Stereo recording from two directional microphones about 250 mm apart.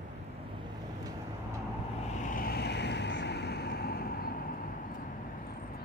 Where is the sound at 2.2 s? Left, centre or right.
Left.